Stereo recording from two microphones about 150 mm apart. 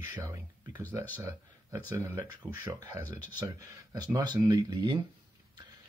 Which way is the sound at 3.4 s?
25° right (ahead or behind).